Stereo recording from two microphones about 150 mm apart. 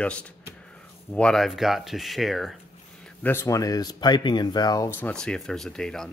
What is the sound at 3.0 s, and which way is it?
Speech, 15° left (ahead or behind).